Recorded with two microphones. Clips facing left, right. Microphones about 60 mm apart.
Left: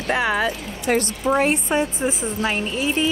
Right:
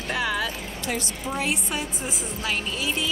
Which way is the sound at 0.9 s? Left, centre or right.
Left.